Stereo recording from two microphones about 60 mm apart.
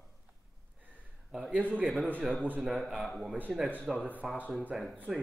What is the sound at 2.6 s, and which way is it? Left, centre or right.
Speech, centre.